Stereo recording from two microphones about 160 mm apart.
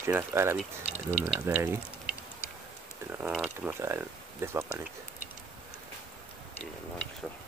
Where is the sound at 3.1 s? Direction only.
5° right (ahead or behind).